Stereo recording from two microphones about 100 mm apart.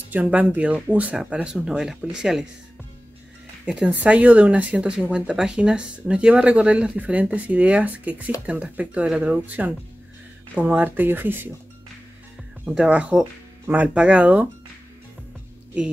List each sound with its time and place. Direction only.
0.1 s speech: 15° right (ahead or behind)
3.6 s speech: 15° right (ahead or behind)
12.6 s speech: 10° right (ahead or behind)